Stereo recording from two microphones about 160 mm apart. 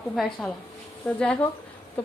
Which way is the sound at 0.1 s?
5° left (ahead or behind).